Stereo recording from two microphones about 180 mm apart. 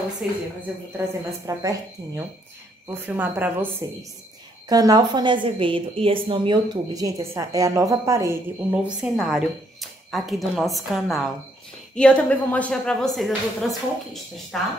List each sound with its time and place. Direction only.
0.2 s a woman's voice: 5° right (ahead or behind)
4.6 s a woman's voice: 20° right (ahead or behind)
8.7 s speech: 5° right (ahead or behind)